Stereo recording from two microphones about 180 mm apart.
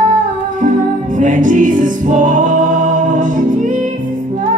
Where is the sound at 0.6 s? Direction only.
45° right (ahead or behind).